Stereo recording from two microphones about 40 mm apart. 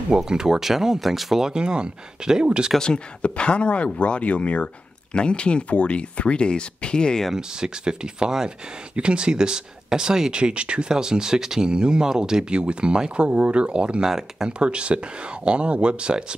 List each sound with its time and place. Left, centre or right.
0.1 s speech: centre
1.5 s speech: right
2.8 s speech: left
7.3 s speech: right
10.4 s speech: right
14.0 s speech: centre
14.6 s speech: right